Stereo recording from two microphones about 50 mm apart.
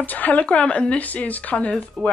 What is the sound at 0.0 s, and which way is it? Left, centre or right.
Speech, left.